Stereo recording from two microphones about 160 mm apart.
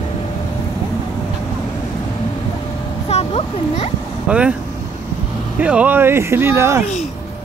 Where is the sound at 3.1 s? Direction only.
40° left (ahead or behind).